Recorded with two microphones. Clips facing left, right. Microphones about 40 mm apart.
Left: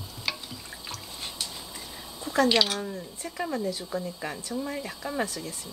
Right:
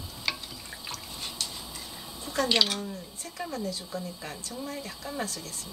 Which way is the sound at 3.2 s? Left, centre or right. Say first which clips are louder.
Left 4 dB; centre.